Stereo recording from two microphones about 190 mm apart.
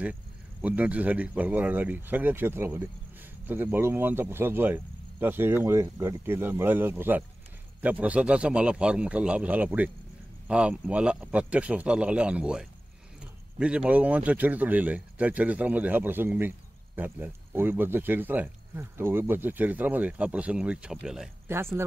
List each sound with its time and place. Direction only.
0.0 s speech: 5° right (ahead or behind)